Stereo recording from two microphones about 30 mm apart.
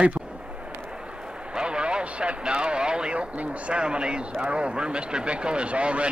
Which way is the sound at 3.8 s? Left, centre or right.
Right.